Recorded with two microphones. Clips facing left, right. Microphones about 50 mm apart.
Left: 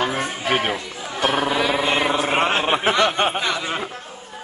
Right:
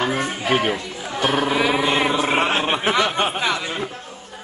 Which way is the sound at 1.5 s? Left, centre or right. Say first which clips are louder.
Right 1 dB; centre.